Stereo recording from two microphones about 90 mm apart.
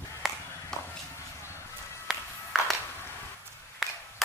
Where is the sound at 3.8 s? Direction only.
5° right (ahead or behind).